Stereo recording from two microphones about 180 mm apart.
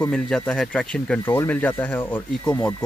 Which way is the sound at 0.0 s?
5° left (ahead or behind).